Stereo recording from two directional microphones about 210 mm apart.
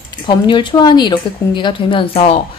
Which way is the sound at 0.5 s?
25° left (ahead or behind).